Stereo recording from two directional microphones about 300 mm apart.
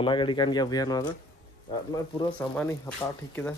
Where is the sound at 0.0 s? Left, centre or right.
Centre.